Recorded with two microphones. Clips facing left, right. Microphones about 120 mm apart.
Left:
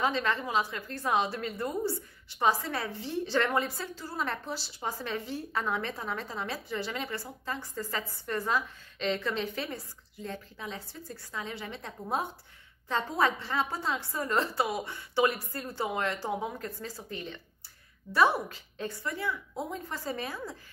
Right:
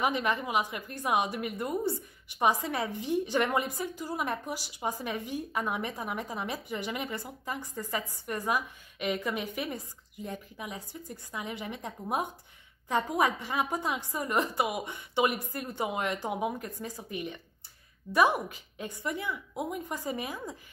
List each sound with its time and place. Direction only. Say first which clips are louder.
0.0 s a woman's voice: even; 15° right (ahead or behind)